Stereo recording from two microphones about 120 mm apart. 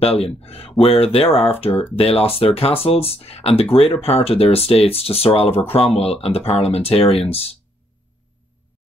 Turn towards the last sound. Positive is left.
turn(degrees=55)  # may be behind; listen again after turning